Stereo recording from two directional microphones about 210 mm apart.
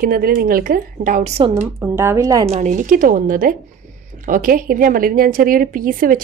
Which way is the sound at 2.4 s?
30° right (ahead or behind).